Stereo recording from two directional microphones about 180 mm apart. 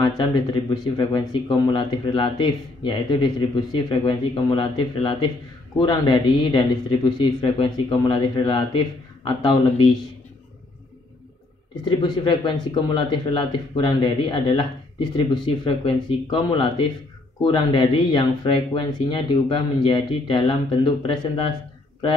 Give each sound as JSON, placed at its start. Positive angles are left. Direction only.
{"t": 0.2, "sound": "speech", "side_deg": 25}
{"t": 11.7, "sound": "speech", "side_deg": 25}